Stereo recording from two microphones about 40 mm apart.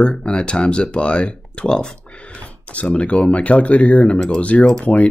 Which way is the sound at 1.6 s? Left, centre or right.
Centre.